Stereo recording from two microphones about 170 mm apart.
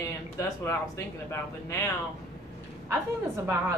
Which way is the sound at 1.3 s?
15° left (ahead or behind).